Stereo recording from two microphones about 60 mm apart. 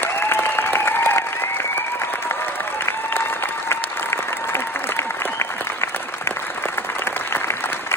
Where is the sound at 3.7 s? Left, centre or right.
Left.